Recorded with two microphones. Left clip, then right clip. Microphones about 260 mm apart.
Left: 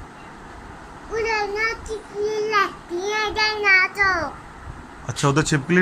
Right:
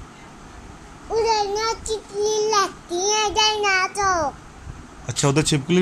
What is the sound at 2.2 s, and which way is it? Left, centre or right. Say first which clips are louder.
Child singing: right 1 dB; centre.